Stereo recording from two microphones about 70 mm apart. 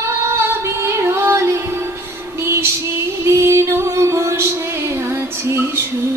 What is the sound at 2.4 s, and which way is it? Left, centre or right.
Music, right.